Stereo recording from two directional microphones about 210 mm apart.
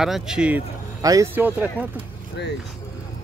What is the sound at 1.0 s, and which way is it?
Speech, 15° right (ahead or behind).